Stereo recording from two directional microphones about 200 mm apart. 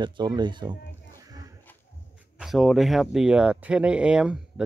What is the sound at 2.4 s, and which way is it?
Speech, centre (ahead or behind).